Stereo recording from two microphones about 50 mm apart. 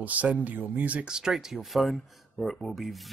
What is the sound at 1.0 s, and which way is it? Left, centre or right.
Speech, centre.